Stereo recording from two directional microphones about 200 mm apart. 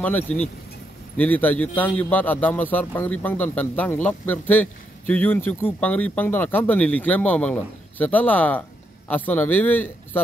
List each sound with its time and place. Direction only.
0.0 s a man's voice: 5° left (ahead or behind)